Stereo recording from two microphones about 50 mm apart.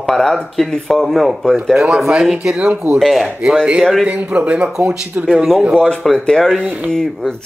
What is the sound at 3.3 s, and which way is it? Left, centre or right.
A man's voice, right.